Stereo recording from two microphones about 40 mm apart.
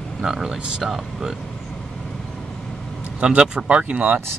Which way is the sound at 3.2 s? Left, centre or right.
Right.